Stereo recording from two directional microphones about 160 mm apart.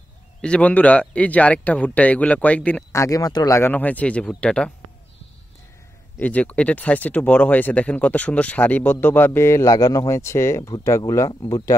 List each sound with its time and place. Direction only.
0.4 s a man's voice: 5° left (ahead or behind)
6.1 s a man's voice: 10° left (ahead or behind)